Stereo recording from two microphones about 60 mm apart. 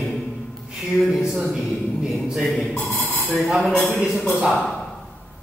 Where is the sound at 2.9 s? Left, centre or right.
Left.